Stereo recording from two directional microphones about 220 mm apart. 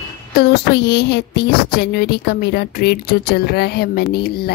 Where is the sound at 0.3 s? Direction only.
45° left (ahead or behind).